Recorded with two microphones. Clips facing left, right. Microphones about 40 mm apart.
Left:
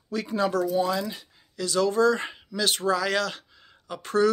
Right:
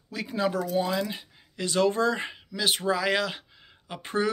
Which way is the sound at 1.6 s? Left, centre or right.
Right.